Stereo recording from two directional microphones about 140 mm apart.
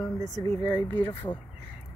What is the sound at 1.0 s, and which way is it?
Speech, 15° left (ahead or behind).